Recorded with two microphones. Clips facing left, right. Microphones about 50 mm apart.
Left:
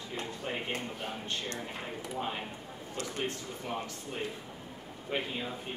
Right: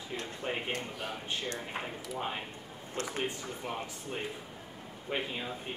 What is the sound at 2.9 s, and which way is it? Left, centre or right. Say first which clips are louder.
Speech: right 2 dB; right.